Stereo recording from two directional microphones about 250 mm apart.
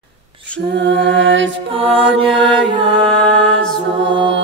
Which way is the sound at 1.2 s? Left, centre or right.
Right.